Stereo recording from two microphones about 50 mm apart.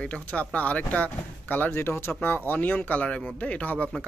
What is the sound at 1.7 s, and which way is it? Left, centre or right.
Speech, left.